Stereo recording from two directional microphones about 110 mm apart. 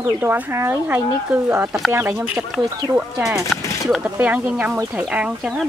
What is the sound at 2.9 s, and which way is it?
Speech, 5° right (ahead or behind).